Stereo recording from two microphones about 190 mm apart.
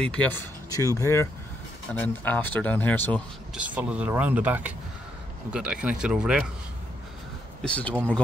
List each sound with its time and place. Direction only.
0.0 s speech: 5° left (ahead or behind)
0.7 s speech: 20° left (ahead or behind)
3.5 s speech: 5° right (ahead or behind)
7.6 s speech: 5° left (ahead or behind)